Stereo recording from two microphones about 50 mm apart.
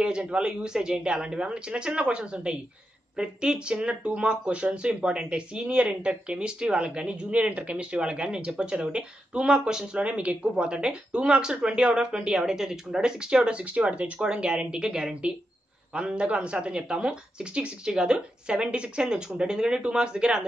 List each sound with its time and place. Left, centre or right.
0.0 s speech: right
10.0 s speech: right